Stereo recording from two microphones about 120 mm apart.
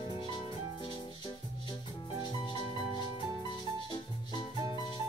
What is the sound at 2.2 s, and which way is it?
Music, 40° left (ahead or behind).